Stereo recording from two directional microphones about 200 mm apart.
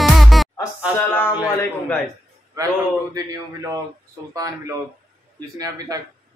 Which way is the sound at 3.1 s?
20° right (ahead or behind).